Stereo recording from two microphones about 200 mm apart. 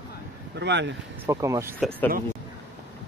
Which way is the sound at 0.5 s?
60° right (ahead or behind).